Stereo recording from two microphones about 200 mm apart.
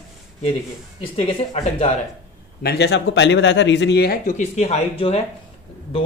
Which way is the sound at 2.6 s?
55° left (ahead or behind).